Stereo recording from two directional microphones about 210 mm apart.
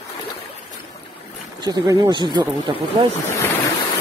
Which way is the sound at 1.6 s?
15° right (ahead or behind).